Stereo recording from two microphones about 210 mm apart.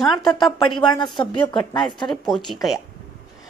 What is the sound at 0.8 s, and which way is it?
A woman's voice, 20° left (ahead or behind).